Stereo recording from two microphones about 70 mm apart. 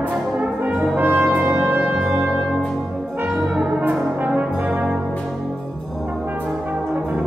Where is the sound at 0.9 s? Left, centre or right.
Right.